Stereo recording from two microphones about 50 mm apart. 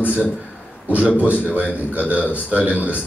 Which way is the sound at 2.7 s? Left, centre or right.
Right.